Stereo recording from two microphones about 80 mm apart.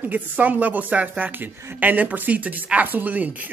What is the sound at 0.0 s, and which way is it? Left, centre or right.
Speech, centre.